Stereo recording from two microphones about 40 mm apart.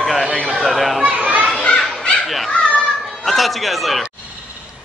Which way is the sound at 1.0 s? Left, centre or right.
Right.